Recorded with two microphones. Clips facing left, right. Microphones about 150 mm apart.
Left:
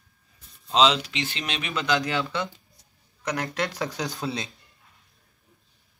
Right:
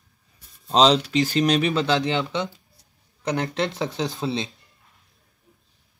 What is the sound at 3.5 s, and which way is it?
Speech, 25° right (ahead or behind).